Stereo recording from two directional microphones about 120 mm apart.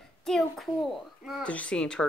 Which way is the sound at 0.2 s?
Centre (ahead or behind).